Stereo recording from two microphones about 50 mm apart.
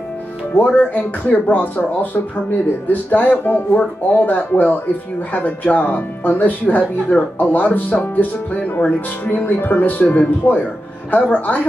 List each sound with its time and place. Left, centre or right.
0.6 s speech: left